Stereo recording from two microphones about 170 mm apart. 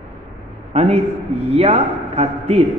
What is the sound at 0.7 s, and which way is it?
A man's voice, 35° right (ahead or behind).